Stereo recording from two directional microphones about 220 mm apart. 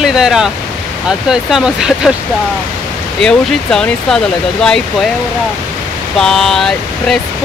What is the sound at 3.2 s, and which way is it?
Speech, 5° left (ahead or behind).